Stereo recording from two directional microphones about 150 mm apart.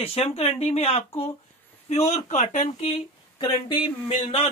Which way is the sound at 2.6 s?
35° left (ahead or behind).